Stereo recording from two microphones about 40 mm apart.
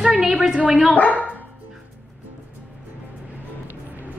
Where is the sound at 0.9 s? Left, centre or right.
Left.